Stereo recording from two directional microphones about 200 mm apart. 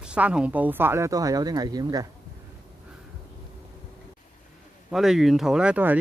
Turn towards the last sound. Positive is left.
turn(degrees=-5)  # may be behind; listen again after turning